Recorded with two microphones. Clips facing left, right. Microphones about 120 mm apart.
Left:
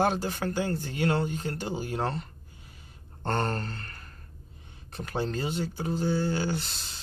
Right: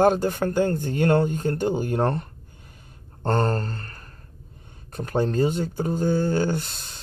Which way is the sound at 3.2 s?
40° right (ahead or behind).